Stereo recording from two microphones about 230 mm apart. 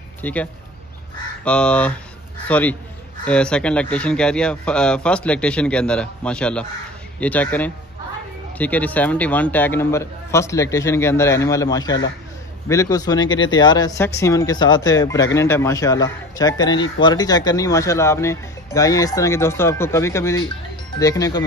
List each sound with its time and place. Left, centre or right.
0.2 s speech: centre